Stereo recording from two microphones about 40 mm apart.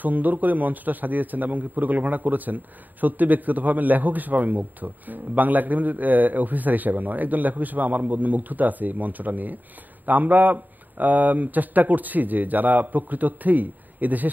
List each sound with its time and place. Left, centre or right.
0.0 s speech: right